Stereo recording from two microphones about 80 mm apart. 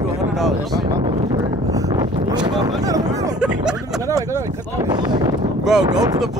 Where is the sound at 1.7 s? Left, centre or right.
Right.